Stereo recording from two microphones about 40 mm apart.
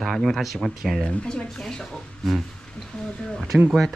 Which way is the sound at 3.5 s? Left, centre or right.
Right.